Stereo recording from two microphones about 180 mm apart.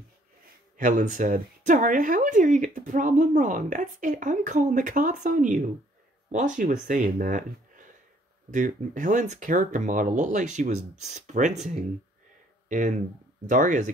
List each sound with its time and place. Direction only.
0.7 s speech: 45° right (ahead or behind)
12.6 s speech: 45° right (ahead or behind)